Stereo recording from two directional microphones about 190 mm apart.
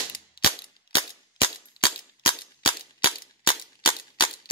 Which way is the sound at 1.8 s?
60° left (ahead or behind).